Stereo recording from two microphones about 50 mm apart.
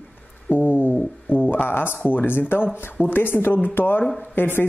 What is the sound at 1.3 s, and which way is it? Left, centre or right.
Speech, left.